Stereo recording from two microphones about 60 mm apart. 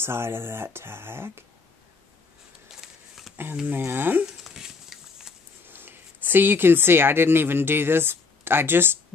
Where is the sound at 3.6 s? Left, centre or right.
Right.